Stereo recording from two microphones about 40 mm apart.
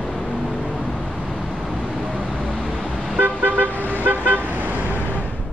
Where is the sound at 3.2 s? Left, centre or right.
Right.